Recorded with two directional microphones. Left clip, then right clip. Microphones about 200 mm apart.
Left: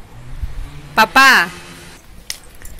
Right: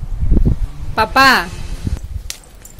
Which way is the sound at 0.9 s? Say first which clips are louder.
Left 2 dB; 5° left (ahead or behind).